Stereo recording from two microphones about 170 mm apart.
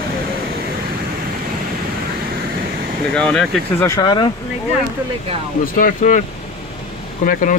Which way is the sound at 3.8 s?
25° left (ahead or behind).